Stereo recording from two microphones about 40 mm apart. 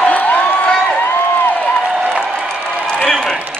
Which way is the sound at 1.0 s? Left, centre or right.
Left.